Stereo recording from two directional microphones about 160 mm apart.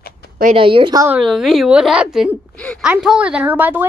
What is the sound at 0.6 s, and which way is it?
Speech, 35° right (ahead or behind).